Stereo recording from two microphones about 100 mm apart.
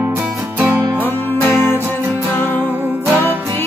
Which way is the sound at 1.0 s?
20° left (ahead or behind).